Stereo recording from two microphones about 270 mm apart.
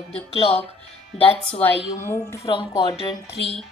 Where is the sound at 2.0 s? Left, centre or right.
Centre.